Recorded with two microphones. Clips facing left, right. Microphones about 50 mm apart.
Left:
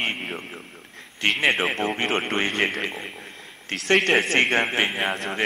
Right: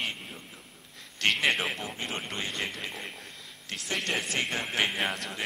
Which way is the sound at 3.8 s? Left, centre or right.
Left.